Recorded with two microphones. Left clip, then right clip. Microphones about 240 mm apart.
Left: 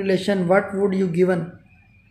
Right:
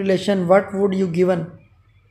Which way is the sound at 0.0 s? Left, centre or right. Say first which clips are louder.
Right 2 dB; centre.